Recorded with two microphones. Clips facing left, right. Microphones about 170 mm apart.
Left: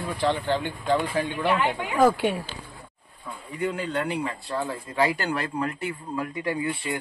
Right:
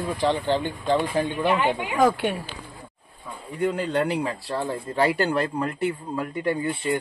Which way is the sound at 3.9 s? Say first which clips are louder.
Right 4 dB; 35° right (ahead or behind).